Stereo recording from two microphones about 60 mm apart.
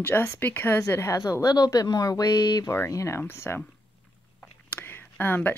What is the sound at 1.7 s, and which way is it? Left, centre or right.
Speech, left.